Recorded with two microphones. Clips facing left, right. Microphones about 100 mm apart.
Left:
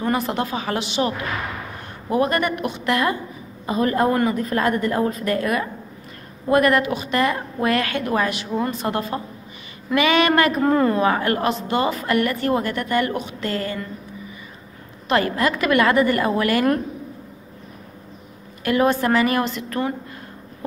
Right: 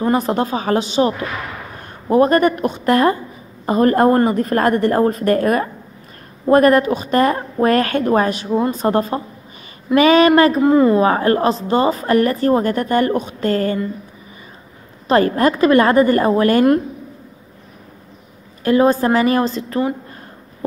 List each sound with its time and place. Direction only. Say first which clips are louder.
0.0 s a woman's voice: right 5 dB; 35° right (ahead or behind)
10.6 s a woman's voice: right 6 dB; 15° right (ahead or behind)
11.0 s a woman's voice: right 5 dB; 35° right (ahead or behind)
15.0 s a woman's voice: right 6 dB; 35° right (ahead or behind)
18.6 s a woman's voice: right 5 dB; 30° right (ahead or behind)